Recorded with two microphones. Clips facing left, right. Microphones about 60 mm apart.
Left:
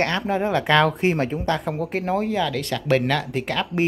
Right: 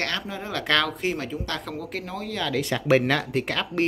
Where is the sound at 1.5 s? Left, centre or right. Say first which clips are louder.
Left 7 dB; left.